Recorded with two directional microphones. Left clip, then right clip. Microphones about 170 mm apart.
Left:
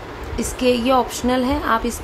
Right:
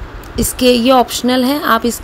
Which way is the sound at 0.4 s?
25° right (ahead or behind).